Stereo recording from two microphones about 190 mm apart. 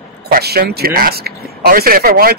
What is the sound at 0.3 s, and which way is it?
Speech, 55° right (ahead or behind).